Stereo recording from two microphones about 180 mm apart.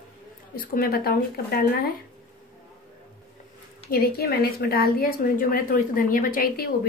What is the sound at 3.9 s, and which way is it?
A woman's voice, 60° left (ahead or behind).